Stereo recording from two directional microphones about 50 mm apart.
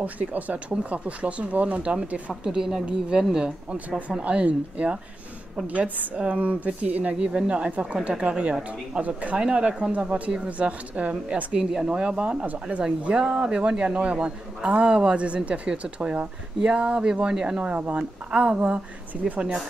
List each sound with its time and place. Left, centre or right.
0.0 s speech: right
1.8 s speech: centre
2.4 s speech: centre
4.2 s speech: right
17.6 s speech: right